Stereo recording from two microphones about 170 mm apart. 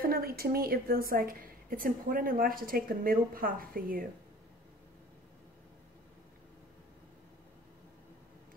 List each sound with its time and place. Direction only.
0.0 s a woman's voice: 60° right (ahead or behind)